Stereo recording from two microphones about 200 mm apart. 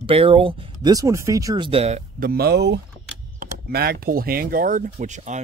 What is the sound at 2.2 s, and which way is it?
Speech, 50° right (ahead or behind).